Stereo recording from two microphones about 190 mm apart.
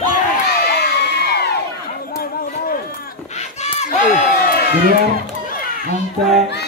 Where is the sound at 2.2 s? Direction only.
50° left (ahead or behind).